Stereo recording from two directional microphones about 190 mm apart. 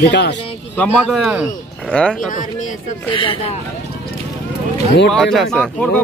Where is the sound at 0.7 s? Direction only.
5° left (ahead or behind).